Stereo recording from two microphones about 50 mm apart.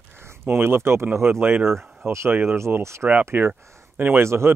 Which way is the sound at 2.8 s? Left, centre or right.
Right.